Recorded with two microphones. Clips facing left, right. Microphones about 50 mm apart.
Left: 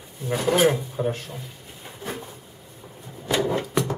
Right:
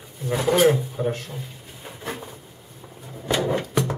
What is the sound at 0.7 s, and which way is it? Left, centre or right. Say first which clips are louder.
Speech: right 2 dB; centre.